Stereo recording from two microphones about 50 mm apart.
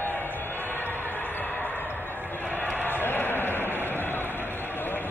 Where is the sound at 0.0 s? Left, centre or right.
Left.